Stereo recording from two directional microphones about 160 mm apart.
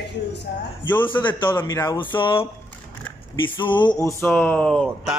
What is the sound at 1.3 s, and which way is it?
A man's voice, 30° left (ahead or behind).